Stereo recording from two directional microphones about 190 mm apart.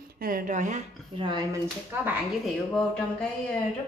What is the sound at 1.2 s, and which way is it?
Speech, 30° right (ahead or behind).